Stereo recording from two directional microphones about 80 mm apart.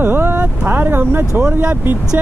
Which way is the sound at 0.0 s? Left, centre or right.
Right.